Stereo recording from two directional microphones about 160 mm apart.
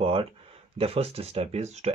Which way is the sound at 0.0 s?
35° right (ahead or behind).